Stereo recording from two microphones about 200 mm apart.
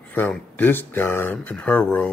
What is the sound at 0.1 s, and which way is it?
Speech, 10° left (ahead or behind).